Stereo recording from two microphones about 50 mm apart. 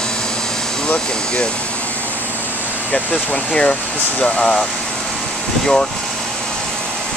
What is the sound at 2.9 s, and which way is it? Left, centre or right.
Speech, left.